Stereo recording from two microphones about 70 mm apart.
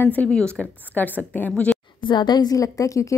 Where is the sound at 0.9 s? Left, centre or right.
Left.